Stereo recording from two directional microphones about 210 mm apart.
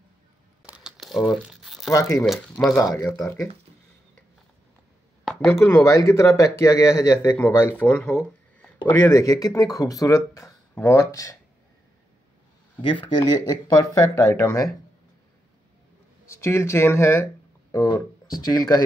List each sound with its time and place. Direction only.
0.7 s crumpling: 5° right (ahead or behind)
1.9 s speech: 15° left (ahead or behind)
2.2 s speech: centre (ahead or behind)
5.2 s speech: 5° left (ahead or behind)
12.8 s speech: 25° left (ahead or behind)
13.7 s speech: 10° left (ahead or behind)
16.3 s speech: 15° left (ahead or behind)